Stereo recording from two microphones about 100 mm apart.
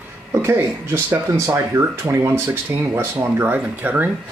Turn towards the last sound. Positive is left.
turn(degrees=-15)  # may be behind; listen again after turning